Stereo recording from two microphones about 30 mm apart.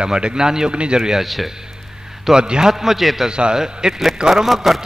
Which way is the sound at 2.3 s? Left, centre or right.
Right.